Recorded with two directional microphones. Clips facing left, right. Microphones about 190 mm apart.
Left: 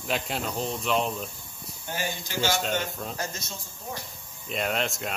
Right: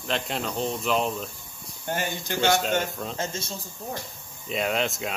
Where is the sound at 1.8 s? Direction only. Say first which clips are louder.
Right 4 dB; 55° right (ahead or behind).